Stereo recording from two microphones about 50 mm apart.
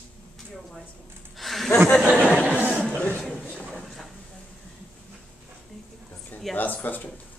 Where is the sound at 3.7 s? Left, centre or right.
Centre.